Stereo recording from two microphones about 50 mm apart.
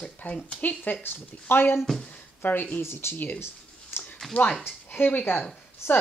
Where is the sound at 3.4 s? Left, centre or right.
Left.